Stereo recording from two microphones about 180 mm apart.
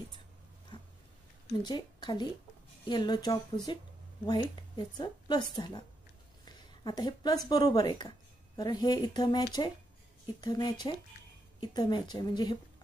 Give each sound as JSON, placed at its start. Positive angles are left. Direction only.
{"t": 1.6, "sound": "speech", "side_deg": 25}
{"t": 6.4, "sound": "a sound", "side_deg": 25}
{"t": 7.4, "sound": "speech", "side_deg": 20}